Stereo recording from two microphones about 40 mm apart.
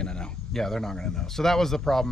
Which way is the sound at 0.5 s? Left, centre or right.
Centre.